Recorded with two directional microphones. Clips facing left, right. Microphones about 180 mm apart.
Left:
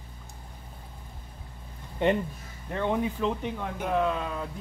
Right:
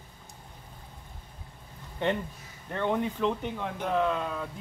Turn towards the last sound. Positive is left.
turn(degrees=5)  # may be behind; listen again after turning